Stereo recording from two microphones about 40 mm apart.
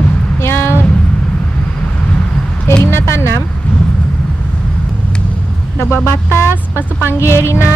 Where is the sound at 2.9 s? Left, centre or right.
Left.